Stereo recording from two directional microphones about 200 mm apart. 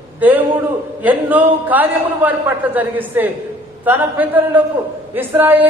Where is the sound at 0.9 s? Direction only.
10° right (ahead or behind).